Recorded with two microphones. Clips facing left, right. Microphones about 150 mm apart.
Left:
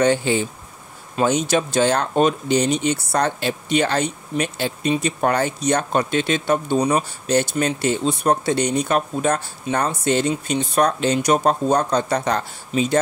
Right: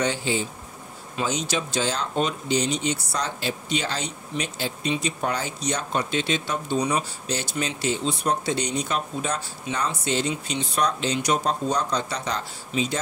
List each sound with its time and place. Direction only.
0.0 s speech: 55° left (ahead or behind)